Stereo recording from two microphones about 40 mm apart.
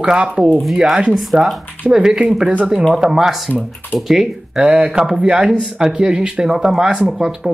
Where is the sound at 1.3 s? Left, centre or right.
Centre.